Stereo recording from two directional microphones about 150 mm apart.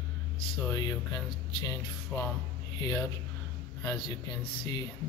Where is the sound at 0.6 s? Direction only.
25° left (ahead or behind).